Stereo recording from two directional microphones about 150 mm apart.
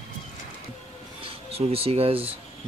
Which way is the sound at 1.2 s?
40° right (ahead or behind).